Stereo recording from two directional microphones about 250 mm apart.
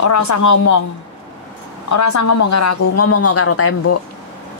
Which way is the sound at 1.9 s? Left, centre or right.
Left.